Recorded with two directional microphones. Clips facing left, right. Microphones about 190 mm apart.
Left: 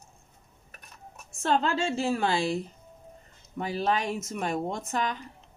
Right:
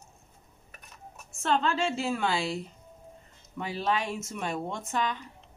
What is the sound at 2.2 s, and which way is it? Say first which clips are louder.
Speech: left 2 dB; 45° left (ahead or behind).